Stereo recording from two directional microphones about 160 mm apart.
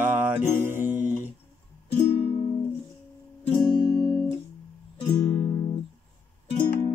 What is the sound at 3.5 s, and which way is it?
Guitar, 35° left (ahead or behind).